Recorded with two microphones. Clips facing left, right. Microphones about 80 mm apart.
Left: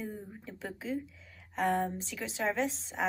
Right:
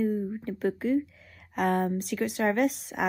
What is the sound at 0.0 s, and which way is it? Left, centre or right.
Speech, right.